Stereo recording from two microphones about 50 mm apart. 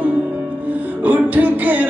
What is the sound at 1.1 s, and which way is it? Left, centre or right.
Music, right.